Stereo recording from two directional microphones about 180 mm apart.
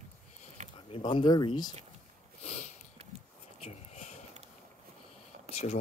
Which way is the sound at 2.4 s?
35° left (ahead or behind).